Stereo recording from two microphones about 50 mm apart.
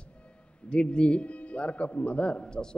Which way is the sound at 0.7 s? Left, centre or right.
Centre.